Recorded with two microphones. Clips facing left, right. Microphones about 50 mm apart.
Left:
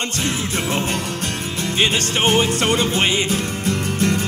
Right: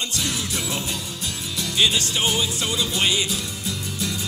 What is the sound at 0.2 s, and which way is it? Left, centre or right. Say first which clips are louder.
Music: left 6 dB; left.